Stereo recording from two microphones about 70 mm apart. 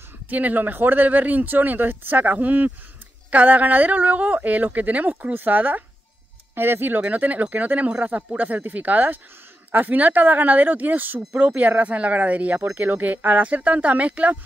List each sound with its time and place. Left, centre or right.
0.3 s speech: right